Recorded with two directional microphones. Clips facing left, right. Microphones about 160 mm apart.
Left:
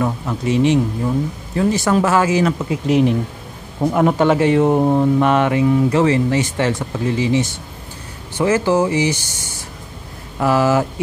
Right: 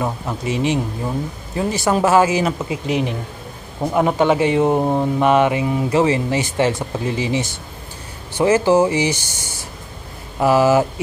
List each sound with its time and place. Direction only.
0.0 s speech: 10° right (ahead or behind)
2.9 s speech: centre (ahead or behind)
10.4 s speech: 10° right (ahead or behind)